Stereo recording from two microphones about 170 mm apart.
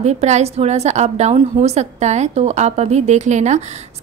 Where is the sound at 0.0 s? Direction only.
40° right (ahead or behind).